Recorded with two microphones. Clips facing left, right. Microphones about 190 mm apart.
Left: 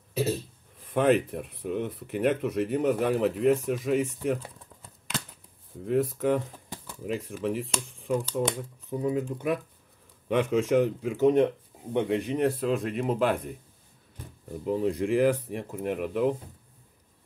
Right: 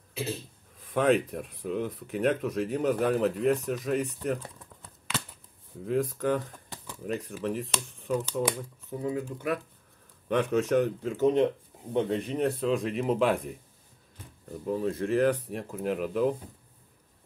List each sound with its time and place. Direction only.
0.1 s a sound: 40° left (ahead or behind)
0.9 s speech: 5° left (ahead or behind)
5.9 s speech: 5° left (ahead or behind)
8.5 s speech: 20° left (ahead or behind)
10.2 s speech: 10° left (ahead or behind)
14.6 s speech: 15° left (ahead or behind)